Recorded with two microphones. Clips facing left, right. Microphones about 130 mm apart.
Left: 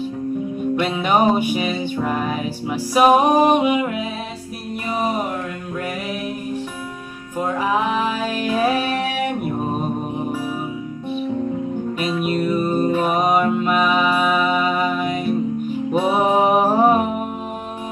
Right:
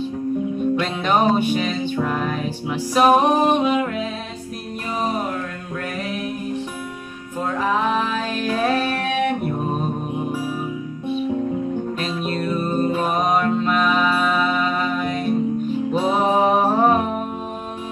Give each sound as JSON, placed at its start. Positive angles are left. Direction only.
{"t": 0.7, "sound": "music", "side_deg": 10}
{"t": 7.3, "sound": "music", "side_deg": 10}
{"t": 12.0, "sound": "music", "side_deg": 10}